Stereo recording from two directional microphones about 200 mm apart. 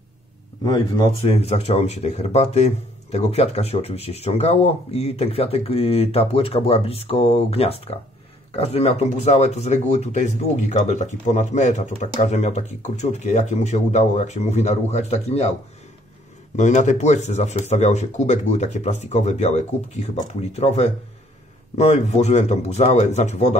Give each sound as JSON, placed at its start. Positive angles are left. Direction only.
{"t": 0.7, "sound": "speech", "side_deg": 25}
{"t": 16.5, "sound": "speech", "side_deg": 35}